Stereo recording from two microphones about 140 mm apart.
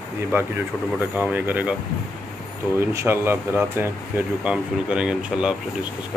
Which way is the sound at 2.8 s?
20° right (ahead or behind).